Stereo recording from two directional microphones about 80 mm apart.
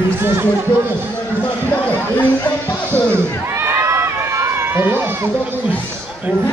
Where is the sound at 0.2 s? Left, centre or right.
Right.